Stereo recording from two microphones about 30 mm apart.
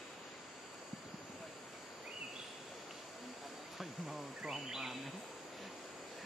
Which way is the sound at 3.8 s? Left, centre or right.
Centre.